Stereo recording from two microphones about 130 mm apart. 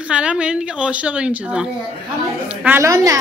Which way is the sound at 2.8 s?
25° right (ahead or behind).